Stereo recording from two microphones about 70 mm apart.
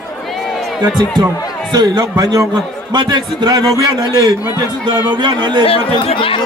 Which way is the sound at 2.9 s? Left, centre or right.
Right.